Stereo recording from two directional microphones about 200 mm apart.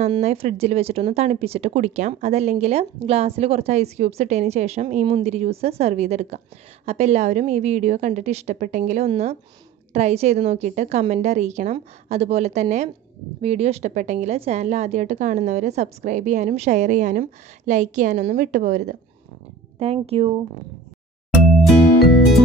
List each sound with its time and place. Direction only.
0.1 s speech: 30° right (ahead or behind)
21.6 s music: centre (ahead or behind)